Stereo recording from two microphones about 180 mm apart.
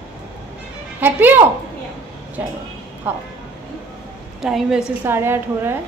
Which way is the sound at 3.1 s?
10° right (ahead or behind).